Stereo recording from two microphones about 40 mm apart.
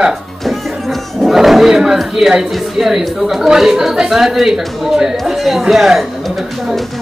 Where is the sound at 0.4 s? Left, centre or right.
Centre.